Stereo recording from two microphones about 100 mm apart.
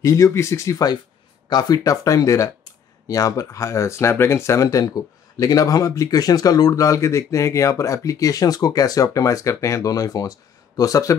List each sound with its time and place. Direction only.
0.0 s speech: 30° left (ahead or behind)